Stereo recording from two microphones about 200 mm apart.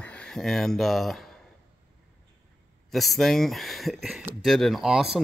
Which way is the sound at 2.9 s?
Centre (ahead or behind).